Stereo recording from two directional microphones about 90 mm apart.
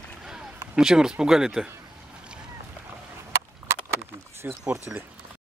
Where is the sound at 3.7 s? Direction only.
30° right (ahead or behind).